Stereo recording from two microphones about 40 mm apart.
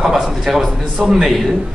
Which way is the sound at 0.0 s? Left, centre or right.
Centre.